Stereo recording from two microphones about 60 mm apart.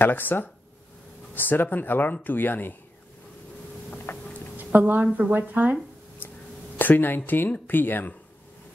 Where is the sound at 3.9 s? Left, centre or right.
Left.